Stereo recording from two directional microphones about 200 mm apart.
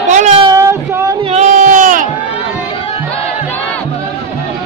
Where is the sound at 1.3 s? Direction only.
35° right (ahead or behind).